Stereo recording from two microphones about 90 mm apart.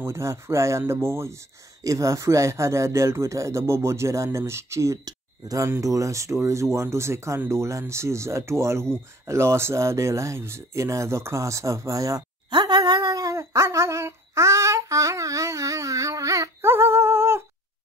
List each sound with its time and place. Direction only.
0.0 s speech: 30° right (ahead or behind)
5.0 s speech: 45° right (ahead or behind)
12.4 s a sound: 55° right (ahead or behind); by 17.4 s 30° right (ahead or behind)